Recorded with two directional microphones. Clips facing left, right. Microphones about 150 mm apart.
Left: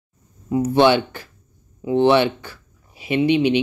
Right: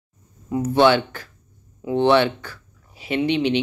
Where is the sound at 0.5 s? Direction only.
10° left (ahead or behind).